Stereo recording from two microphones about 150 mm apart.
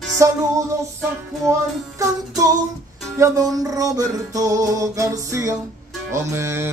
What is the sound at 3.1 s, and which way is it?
Music, 20° right (ahead or behind).